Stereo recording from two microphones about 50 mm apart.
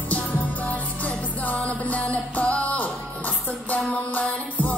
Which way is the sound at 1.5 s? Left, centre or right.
Left.